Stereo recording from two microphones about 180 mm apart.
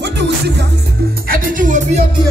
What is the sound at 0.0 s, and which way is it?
Music, 70° right (ahead or behind).